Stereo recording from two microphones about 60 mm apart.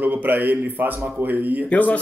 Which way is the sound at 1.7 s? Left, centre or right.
Left.